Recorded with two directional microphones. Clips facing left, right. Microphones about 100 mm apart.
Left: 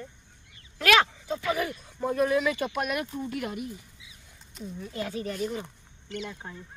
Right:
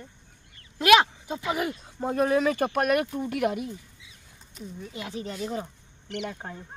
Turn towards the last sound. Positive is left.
turn(degrees=-55)  # may be behind; listen again after turning